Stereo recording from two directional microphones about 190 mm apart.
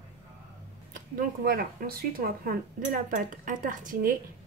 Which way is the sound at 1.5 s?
50° right (ahead or behind).